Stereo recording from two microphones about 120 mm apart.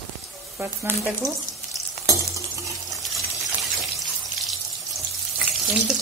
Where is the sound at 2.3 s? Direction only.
25° right (ahead or behind).